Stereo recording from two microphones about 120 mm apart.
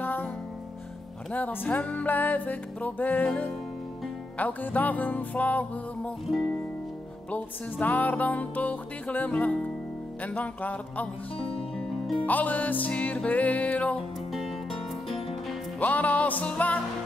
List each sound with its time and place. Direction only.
0.0 s music: 15° left (ahead or behind)
1.3 s music: 15° left (ahead or behind)
7.2 s music: 15° left (ahead or behind)
11.3 s music: 50° left (ahead or behind)
12.3 s music: 15° left (ahead or behind)
14.3 s music: centre (ahead or behind)
15.8 s music: 15° left (ahead or behind)